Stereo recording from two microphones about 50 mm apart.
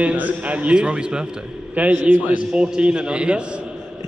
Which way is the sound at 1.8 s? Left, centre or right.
Right.